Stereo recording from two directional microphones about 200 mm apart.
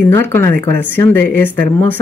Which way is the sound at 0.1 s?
10° left (ahead or behind).